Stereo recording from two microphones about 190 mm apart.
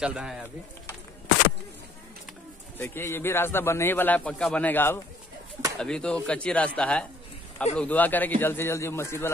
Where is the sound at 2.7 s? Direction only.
10° left (ahead or behind).